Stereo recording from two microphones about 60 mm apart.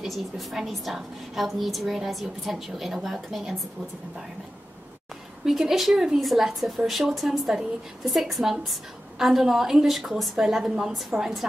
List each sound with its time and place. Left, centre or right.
0.0 s a woman's voice: centre
5.4 s a woman's voice: centre